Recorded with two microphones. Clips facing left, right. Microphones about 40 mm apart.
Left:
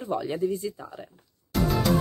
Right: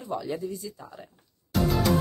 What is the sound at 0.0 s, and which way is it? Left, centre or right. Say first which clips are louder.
Speech: left 4 dB; left.